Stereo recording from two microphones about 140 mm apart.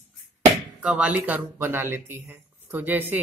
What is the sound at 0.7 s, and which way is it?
Speech, 10° right (ahead or behind).